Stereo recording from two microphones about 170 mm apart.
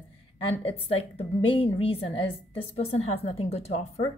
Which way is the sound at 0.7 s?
35° left (ahead or behind).